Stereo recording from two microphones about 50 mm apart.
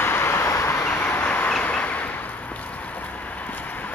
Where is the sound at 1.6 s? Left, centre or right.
Left.